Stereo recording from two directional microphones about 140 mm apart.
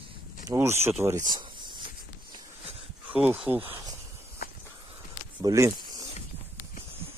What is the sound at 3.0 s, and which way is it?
Speech, 10° right (ahead or behind).